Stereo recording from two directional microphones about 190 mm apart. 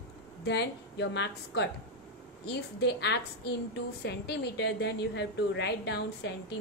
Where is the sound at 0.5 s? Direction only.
65° left (ahead or behind).